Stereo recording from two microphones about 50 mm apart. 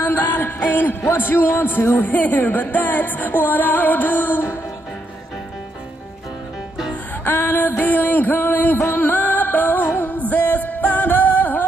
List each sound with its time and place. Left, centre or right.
0.0 s music: left
1.0 s a man's voice: left
2.0 s music: left
7.2 s music: left